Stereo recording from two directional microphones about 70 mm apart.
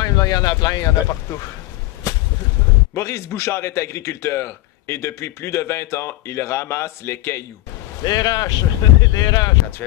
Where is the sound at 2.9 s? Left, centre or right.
Left.